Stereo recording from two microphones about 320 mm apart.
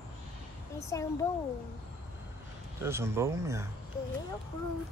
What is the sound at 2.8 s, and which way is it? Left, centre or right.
Speech, centre.